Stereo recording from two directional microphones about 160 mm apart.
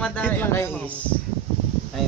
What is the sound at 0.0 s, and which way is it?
Speech, 10° left (ahead or behind).